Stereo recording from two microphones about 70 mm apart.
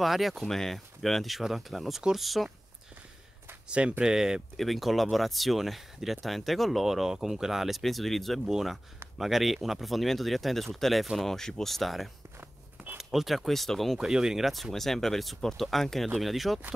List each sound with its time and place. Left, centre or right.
0.0 s speech: centre
3.6 s speech: centre
13.9 s speech: centre